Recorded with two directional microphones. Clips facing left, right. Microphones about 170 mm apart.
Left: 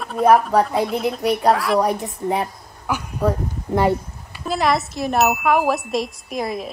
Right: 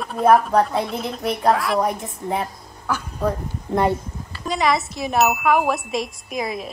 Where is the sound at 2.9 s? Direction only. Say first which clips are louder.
Left 2 dB; 5° left (ahead or behind).